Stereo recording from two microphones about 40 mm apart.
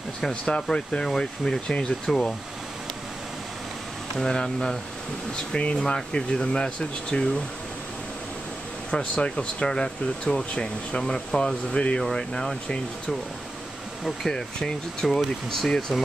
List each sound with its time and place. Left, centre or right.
0.3 s speech: left
4.2 s speech: centre
8.9 s speech: centre
14.0 s speech: centre